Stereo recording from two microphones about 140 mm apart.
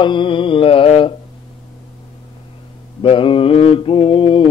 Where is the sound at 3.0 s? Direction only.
40° left (ahead or behind).